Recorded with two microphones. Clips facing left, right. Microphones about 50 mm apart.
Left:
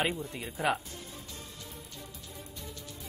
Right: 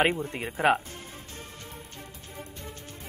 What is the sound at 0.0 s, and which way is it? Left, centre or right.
Speech, right.